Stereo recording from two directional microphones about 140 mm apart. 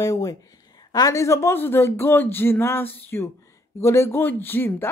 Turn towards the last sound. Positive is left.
turn(degrees=15)  # may be behind; listen again after turning